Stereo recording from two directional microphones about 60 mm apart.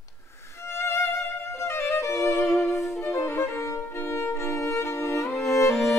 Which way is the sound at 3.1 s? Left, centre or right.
Left.